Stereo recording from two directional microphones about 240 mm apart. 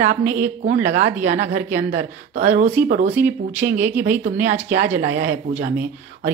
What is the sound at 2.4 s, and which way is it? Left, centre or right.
Speech, right.